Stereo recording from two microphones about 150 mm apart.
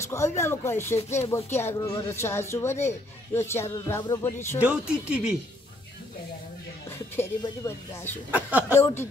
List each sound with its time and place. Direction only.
0.4 s speech: 15° left (ahead or behind)
4.6 s speech: 5° right (ahead or behind)
7.2 s speech: 15° left (ahead or behind)
8.3 s speech: 10° right (ahead or behind)
8.7 s speech: 20° left (ahead or behind)